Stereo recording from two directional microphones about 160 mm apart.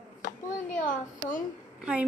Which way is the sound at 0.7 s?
55° left (ahead or behind).